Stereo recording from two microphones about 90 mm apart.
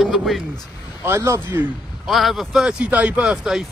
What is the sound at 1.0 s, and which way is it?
Speech, 30° right (ahead or behind).